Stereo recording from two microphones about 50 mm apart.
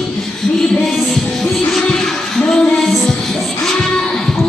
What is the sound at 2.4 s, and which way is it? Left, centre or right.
Music, centre.